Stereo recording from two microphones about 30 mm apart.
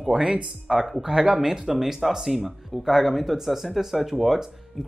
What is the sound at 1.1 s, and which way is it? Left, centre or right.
A man's voice, right.